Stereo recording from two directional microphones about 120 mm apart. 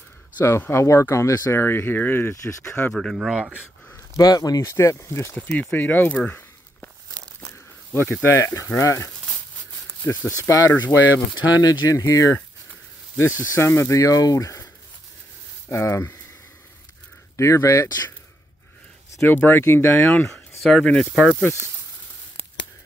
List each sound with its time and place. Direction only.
0.4 s speech: 20° left (ahead or behind)
2.9 s speech: centre (ahead or behind)
4.2 s speech: 30° left (ahead or behind)
5.3 s speech: 10° left (ahead or behind); by 14.7 s 25° left (ahead or behind)
15.7 s speech: 20° left (ahead or behind)
17.4 s speech: 25° left (ahead or behind)
19.1 s speech: 15° left (ahead or behind)
20.1 s speech: 5° left (ahead or behind)
21.4 s speech: 20° left (ahead or behind)